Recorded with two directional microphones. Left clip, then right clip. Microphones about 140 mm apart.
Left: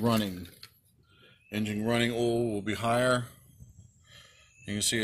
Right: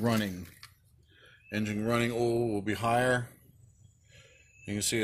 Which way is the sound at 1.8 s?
45° right (ahead or behind).